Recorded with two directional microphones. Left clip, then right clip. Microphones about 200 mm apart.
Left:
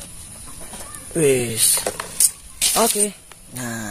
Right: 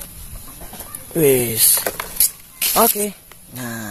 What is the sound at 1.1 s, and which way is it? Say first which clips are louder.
Speech: right 2 dB; 15° right (ahead or behind).